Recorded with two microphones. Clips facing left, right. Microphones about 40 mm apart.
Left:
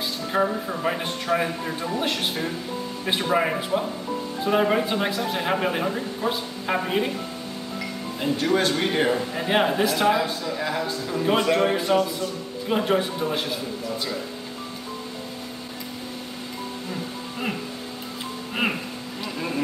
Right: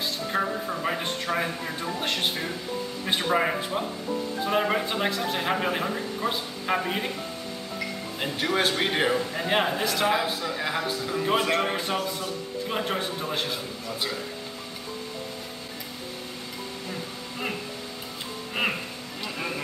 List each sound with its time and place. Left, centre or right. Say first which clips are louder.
0.3 s a man's voice: left 5 dB; centre
8.2 s speech: left 4 dB; right
9.3 s a man's voice: left 3 dB; centre
10.1 s speech: left 2 dB; right
11.5 s a man's voice: left 6 dB; centre